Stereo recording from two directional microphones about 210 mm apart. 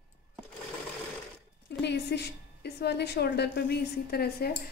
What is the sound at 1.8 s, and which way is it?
A woman's voice, 55° left (ahead or behind).